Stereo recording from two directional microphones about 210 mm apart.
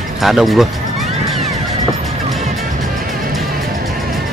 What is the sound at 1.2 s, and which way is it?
Music, centre (ahead or behind).